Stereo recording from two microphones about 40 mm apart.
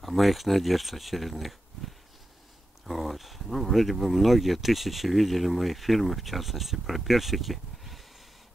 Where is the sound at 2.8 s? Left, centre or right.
Centre.